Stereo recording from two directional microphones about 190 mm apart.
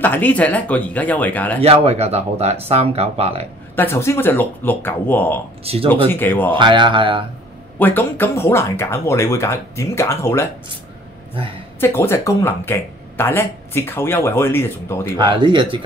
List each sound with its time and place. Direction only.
0.0 s speech: 10° left (ahead or behind)
1.6 s speech: 30° right (ahead or behind)
3.7 s speech: 15° left (ahead or behind)
5.6 s speech: 30° right (ahead or behind)
5.9 s speech: 10° left (ahead or behind)
6.5 s speech: 25° right (ahead or behind)
7.8 s speech: 10° left (ahead or behind)
11.8 s speech: 10° left (ahead or behind)
15.1 s speech: 25° right (ahead or behind)